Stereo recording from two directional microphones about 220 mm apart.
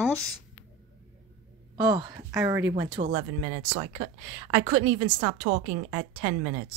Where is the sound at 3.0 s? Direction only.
35° right (ahead or behind).